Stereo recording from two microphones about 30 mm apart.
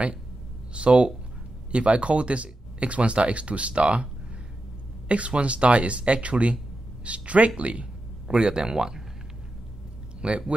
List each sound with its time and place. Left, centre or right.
0.7 s speech: right
5.0 s speech: right
8.6 s speech: right
10.2 s speech: right